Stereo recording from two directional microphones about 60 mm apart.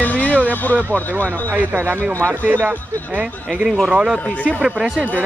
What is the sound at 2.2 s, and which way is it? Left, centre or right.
Speech, right.